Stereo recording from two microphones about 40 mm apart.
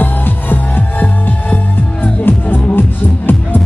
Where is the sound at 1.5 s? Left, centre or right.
Left.